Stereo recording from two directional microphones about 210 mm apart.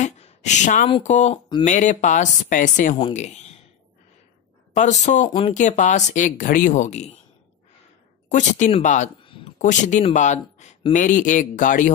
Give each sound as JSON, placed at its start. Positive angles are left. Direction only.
{"t": 0.0, "sound": "a sound", "side_deg": 35}
{"t": 0.8, "sound": "speech", "side_deg": 30}
{"t": 4.7, "sound": "speech", "side_deg": 35}
{"t": 8.3, "sound": "speech", "side_deg": 35}